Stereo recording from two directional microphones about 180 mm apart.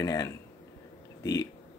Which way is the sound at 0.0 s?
20° left (ahead or behind).